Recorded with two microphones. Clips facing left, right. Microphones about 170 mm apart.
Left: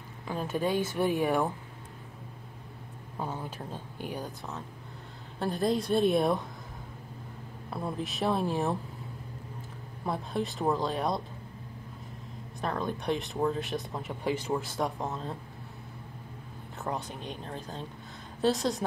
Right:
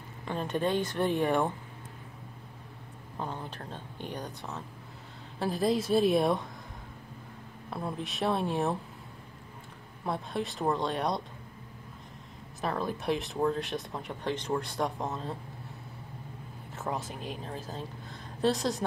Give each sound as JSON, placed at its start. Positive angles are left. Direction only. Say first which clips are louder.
{"t": 0.2, "sound": "speech", "louder": "even", "side_deg": 5}
{"t": 3.2, "sound": "speech", "louder": "left 1 dB", "side_deg": 5}
{"t": 7.7, "sound": "speech", "louder": "left 1 dB", "side_deg": 0}
{"t": 10.0, "sound": "speech", "louder": "left 1 dB", "side_deg": 0}
{"t": 12.6, "sound": "speech", "louder": "even", "side_deg": 0}
{"t": 16.7, "sound": "speech", "louder": "even", "side_deg": 0}